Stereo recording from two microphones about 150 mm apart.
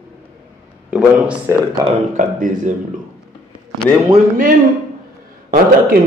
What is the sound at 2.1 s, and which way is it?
Speech, 55° right (ahead or behind).